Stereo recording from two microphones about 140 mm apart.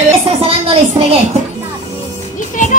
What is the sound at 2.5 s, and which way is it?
Children playing, 70° left (ahead or behind).